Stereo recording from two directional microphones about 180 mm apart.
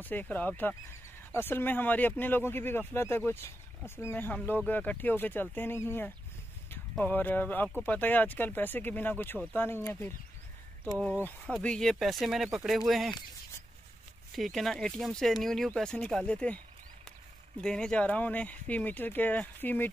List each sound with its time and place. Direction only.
0.0 s speech: 10° left (ahead or behind)
11.2 s speech: 5° left (ahead or behind)
14.3 s speech: centre (ahead or behind)
17.6 s speech: 5° left (ahead or behind)